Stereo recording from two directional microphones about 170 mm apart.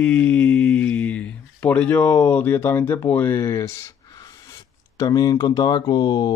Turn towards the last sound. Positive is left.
turn(degrees=25)  # may be behind; listen again after turning